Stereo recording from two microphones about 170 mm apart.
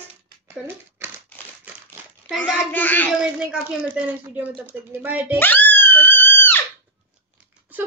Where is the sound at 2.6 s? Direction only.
10° left (ahead or behind).